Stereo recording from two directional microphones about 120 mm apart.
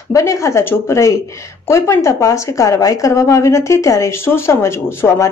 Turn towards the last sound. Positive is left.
turn(degrees=20)  # may be behind; listen again after turning